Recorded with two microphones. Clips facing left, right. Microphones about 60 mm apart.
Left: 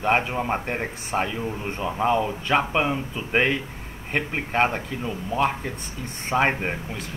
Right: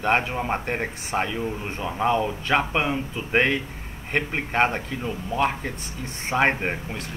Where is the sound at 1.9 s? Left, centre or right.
Centre.